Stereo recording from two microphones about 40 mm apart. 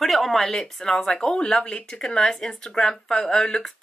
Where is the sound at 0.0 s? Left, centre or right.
Centre.